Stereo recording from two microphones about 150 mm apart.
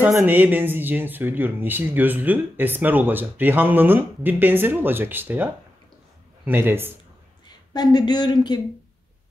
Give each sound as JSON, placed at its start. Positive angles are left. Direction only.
{"t": 0.2, "sound": "speech", "side_deg": -10}
{"t": 7.4, "sound": "speech", "side_deg": 30}